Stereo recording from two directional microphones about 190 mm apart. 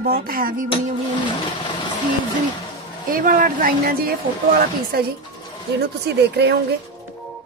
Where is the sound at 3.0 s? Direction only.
45° right (ahead or behind).